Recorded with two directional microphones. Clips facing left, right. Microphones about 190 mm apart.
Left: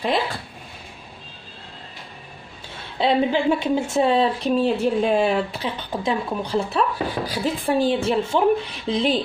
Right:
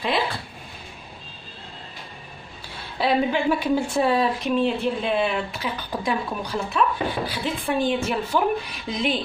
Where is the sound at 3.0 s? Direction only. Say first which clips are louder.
Left 2 dB; 25° left (ahead or behind).